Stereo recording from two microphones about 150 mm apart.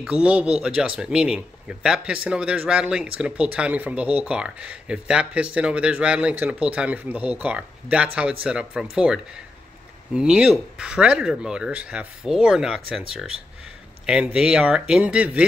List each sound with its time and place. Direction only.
0.0 s speech: 5° right (ahead or behind)
14.0 s speech: 5° right (ahead or behind)